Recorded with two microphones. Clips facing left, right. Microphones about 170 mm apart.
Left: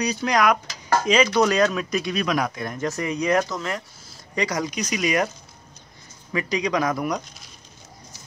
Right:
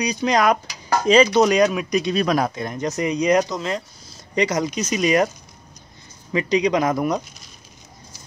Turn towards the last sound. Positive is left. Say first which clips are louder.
# right 4 dB
turn(degrees=-25)  # may be behind; listen again after turning